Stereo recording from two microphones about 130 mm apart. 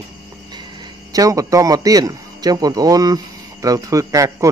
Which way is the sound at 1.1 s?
25° right (ahead or behind).